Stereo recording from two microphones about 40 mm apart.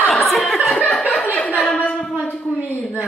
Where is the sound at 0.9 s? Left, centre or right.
Centre.